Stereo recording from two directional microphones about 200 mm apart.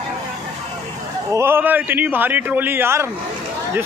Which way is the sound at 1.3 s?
10° right (ahead or behind).